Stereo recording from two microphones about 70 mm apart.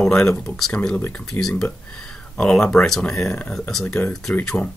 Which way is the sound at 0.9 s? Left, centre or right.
Left.